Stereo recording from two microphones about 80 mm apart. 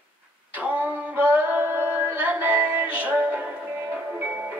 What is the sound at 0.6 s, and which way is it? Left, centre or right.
Music, right.